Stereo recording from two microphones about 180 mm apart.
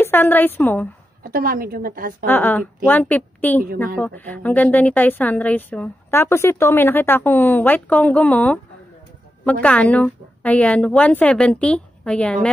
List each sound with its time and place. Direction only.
0.0 s a woman's voice: 10° left (ahead or behind)
1.3 s a woman's voice: 55° right (ahead or behind)
2.2 s a woman's voice: 10° left (ahead or behind)